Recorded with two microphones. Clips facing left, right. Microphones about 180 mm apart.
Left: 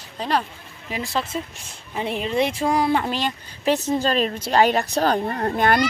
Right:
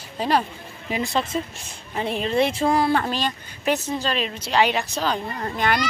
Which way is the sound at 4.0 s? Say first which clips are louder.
Left 4 dB; 45° left (ahead or behind).